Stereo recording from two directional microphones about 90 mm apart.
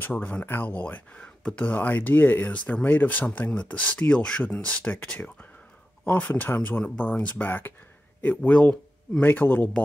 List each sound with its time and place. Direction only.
0.0 s speech: 15° left (ahead or behind)